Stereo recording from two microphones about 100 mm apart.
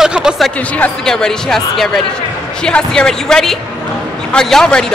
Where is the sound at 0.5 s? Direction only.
15° left (ahead or behind).